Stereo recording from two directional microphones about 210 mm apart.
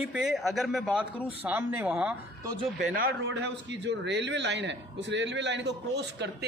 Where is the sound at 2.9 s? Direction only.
50° right (ahead or behind).